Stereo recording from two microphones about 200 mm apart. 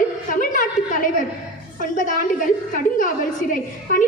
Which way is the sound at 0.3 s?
40° left (ahead or behind).